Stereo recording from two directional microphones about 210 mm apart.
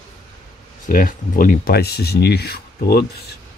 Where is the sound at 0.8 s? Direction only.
40° left (ahead or behind).